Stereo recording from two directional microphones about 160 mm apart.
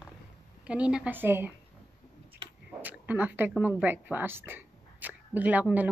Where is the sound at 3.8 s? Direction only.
10° right (ahead or behind).